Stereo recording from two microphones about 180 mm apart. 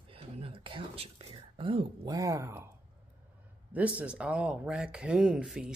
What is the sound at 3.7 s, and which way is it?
Speech, 10° right (ahead or behind).